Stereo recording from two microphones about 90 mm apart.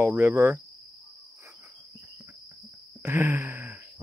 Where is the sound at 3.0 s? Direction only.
25° right (ahead or behind).